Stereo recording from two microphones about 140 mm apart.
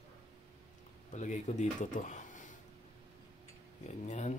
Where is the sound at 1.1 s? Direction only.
55° left (ahead or behind).